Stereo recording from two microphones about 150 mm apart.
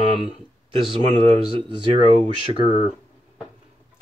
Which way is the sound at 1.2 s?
35° right (ahead or behind).